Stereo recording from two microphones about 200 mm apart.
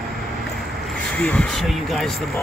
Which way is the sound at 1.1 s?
5° left (ahead or behind).